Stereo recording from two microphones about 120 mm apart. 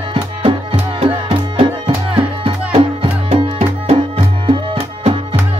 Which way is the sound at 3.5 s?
60° right (ahead or behind).